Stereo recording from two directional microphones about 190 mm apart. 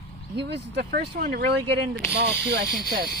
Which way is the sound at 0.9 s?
55° right (ahead or behind).